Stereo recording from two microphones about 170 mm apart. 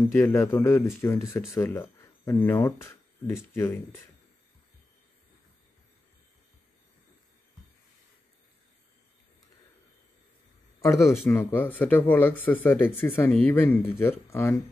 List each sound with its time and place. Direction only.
0.1 s speech: 15° left (ahead or behind)
10.8 s speech: 15° left (ahead or behind)